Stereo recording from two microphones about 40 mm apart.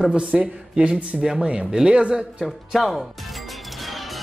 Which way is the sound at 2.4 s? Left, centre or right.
Centre.